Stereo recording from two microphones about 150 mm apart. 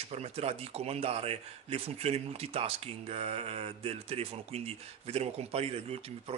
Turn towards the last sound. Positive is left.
turn(degrees=-40)  # may be behind; listen again after turning